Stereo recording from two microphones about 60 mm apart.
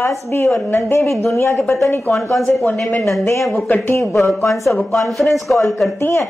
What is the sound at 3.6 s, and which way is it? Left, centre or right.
Speech, left.